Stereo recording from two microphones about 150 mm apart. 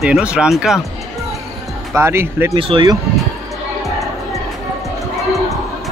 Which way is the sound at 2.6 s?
35° right (ahead or behind).